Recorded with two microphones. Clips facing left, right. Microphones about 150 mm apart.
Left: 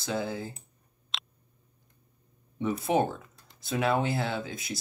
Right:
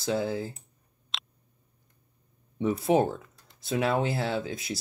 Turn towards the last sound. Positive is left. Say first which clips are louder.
# right 3 dB
turn(degrees=-35)  # may be behind; listen again after turning